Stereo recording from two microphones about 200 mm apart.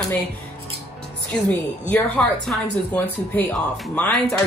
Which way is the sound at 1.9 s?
5° left (ahead or behind).